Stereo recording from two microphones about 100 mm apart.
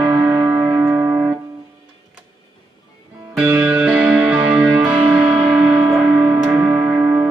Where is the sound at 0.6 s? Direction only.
30° right (ahead or behind).